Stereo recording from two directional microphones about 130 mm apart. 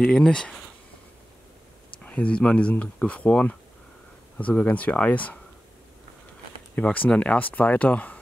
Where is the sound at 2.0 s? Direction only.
10° left (ahead or behind).